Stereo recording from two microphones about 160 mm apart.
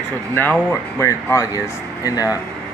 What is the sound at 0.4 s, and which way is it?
Speech, 10° left (ahead or behind).